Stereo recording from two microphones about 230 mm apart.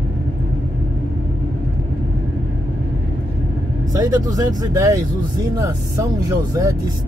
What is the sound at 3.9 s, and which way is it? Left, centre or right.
Speech, centre.